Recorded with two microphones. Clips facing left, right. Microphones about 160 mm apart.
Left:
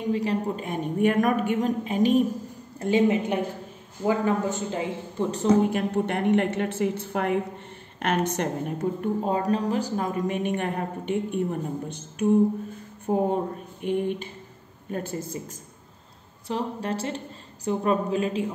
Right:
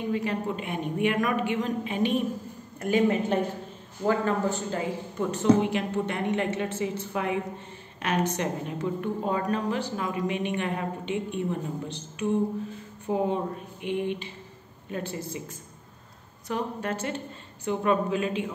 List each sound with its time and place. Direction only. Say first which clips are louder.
0.1 s a woman's voice: left 5 dB; 35° left (ahead or behind)
2.8 s a woman's voice: left 2 dB; 25° left (ahead or behind)
5.3 s a woman's voice: left 1 dB; 40° left (ahead or behind)
13.0 s a woman's voice: left 3 dB; 45° left (ahead or behind)
16.4 s a woman's voice: left 1 dB; 30° left (ahead or behind)